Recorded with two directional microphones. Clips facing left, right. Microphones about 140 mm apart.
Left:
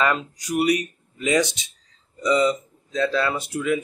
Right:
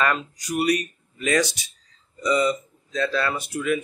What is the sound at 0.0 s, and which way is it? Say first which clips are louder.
Speech: left 1 dB; 20° left (ahead or behind).